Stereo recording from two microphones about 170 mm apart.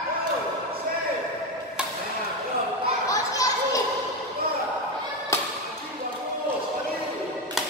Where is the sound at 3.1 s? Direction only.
20° left (ahead or behind).